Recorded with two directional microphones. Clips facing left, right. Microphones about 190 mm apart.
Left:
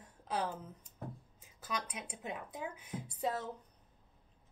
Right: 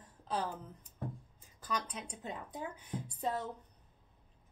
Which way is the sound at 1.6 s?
10° left (ahead or behind).